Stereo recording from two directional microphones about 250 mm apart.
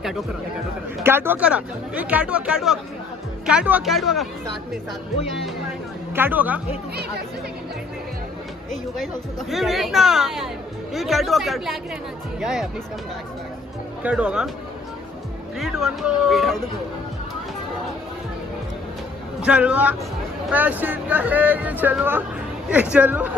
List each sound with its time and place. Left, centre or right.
1.0 s speech: centre
6.1 s speech: centre
8.9 s speech: centre
14.0 s speech: centre
15.6 s speech: centre
19.4 s speech: centre